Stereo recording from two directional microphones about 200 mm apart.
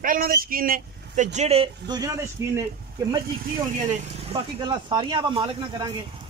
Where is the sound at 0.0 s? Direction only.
45° right (ahead or behind); by 2.5 s 15° right (ahead or behind).